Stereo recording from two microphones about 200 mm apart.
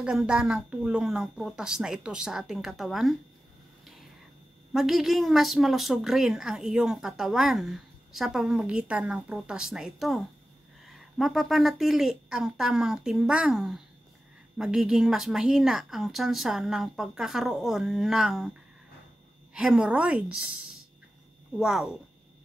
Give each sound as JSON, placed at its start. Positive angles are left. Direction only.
{"t": 0.0, "sound": "a woman's voice", "side_deg": -5}
{"t": 4.7, "sound": "a woman's voice", "side_deg": 0}
{"t": 19.5, "sound": "a woman's voice", "side_deg": -5}